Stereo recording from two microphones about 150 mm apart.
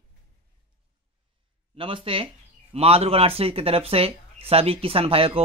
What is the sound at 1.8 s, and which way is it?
Speech, 35° right (ahead or behind).